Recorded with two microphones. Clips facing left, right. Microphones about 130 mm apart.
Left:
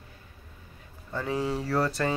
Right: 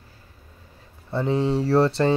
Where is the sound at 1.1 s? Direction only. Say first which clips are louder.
Right 7 dB; 25° right (ahead or behind).